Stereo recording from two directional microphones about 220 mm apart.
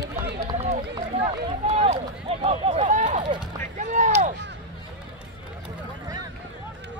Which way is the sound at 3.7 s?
35° right (ahead or behind).